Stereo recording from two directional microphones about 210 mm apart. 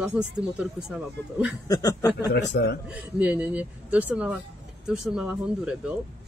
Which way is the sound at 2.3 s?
55° left (ahead or behind).